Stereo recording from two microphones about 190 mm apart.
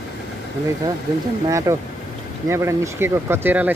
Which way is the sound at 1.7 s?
15° right (ahead or behind).